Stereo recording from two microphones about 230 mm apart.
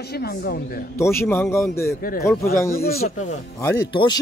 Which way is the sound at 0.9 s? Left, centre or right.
Centre.